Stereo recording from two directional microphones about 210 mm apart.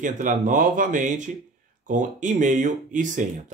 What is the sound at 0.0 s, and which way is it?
Speech, 40° right (ahead or behind).